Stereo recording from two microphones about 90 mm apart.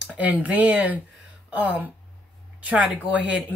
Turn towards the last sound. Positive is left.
turn(degrees=-15)  # may be behind; listen again after turning